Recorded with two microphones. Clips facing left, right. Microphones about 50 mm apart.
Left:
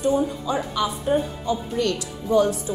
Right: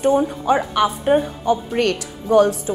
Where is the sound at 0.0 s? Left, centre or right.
Right.